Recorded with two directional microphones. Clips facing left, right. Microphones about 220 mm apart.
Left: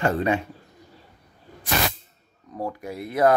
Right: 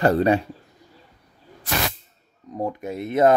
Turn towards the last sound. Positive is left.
turn(degrees=-25)  # may be behind; listen again after turning